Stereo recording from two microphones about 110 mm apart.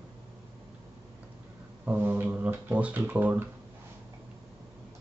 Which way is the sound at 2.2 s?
15° right (ahead or behind).